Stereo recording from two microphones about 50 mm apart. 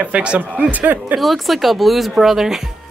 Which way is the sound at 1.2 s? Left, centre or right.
Centre.